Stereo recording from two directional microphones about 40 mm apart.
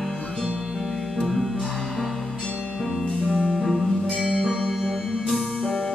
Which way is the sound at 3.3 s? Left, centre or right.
Centre.